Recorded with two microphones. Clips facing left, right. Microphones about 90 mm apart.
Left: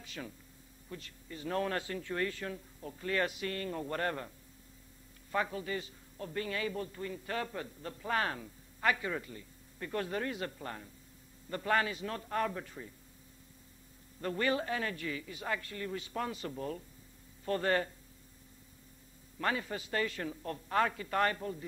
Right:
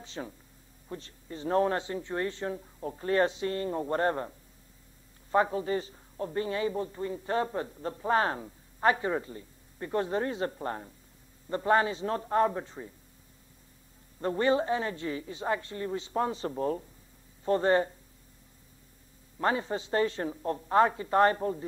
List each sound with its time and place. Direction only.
0.0 s a sound: 30° right (ahead or behind)
0.8 s a man's voice: 30° right (ahead or behind)
5.3 s a man's voice: 30° right (ahead or behind)
14.2 s a man's voice: 25° right (ahead or behind)
17.5 s a man's voice: 25° right (ahead or behind)
19.3 s a man's voice: 30° right (ahead or behind)